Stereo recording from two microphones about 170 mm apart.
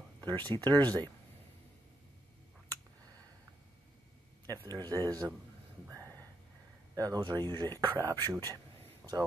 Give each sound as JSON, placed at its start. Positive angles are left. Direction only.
{"t": 0.2, "sound": "speech", "side_deg": -25}
{"t": 0.7, "sound": "speech", "side_deg": 10}
{"t": 4.6, "sound": "speech", "side_deg": -25}
{"t": 7.0, "sound": "speech", "side_deg": -20}
{"t": 9.0, "sound": "a sound", "side_deg": -5}